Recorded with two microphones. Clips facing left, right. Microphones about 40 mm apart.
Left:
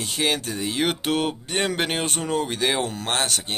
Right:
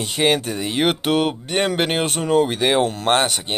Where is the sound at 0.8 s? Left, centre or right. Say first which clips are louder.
Right 6 dB; centre.